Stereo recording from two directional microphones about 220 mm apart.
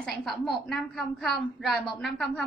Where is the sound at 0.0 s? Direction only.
Centre (ahead or behind).